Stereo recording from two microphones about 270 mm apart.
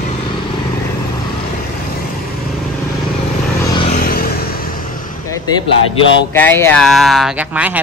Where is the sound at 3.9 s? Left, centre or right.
Left.